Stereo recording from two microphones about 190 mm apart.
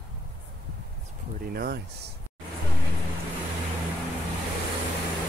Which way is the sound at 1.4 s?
50° right (ahead or behind).